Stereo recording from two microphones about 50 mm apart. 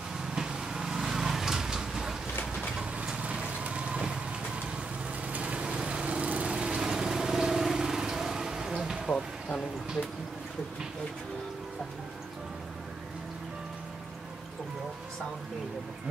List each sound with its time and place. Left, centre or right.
0.2 s vehicle: centre
2.8 s vehicle: right
5.3 s vehicle: right